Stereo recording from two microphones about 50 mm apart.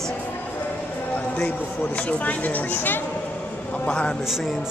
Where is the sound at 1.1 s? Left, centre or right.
Left.